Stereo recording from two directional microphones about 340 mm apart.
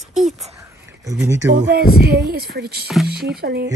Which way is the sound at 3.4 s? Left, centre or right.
Right.